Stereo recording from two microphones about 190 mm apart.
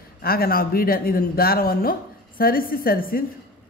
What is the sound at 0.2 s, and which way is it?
Speech, 50° left (ahead or behind).